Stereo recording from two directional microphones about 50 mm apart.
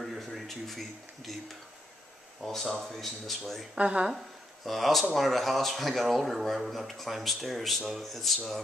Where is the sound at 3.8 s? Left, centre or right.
Right.